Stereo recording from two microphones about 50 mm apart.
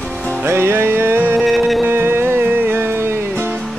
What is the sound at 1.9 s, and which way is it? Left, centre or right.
Music, right.